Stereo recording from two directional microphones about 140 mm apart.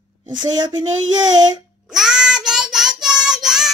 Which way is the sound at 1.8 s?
5° right (ahead or behind).